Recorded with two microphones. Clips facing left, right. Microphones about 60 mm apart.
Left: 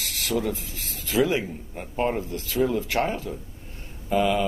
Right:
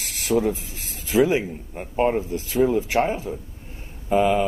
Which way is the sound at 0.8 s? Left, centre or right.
Centre.